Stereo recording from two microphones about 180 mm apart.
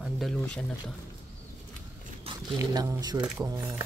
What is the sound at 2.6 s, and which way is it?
Speech, 20° right (ahead or behind).